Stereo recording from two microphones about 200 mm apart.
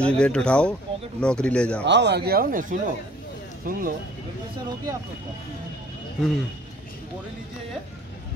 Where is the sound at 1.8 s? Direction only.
60° right (ahead or behind).